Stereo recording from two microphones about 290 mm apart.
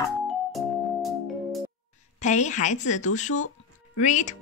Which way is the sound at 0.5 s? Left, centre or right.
Centre.